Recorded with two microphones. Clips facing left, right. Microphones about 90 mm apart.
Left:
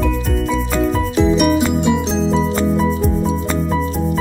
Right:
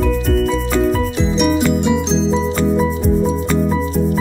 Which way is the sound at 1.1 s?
5° left (ahead or behind).